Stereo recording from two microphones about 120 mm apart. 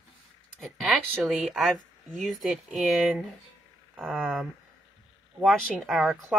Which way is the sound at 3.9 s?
15° right (ahead or behind).